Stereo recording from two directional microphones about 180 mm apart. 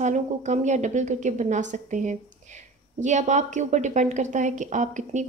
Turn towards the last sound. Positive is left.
turn(degrees=-40)  # may be behind; listen again after turning